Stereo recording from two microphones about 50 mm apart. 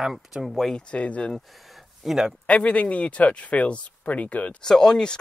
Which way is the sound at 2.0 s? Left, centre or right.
Centre.